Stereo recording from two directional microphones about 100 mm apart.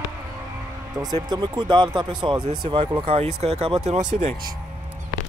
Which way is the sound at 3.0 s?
85° right.